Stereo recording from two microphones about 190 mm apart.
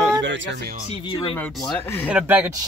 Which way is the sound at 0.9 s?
25° left (ahead or behind).